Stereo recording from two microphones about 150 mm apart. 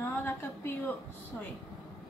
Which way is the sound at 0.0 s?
15° left (ahead or behind).